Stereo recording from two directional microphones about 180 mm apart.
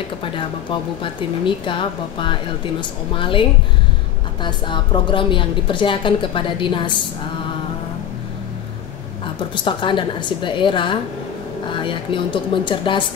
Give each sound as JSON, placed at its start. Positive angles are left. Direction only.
{"t": 0.2, "sound": "a woman's voice", "side_deg": 30}
{"t": 9.2, "sound": "a woman's voice", "side_deg": 25}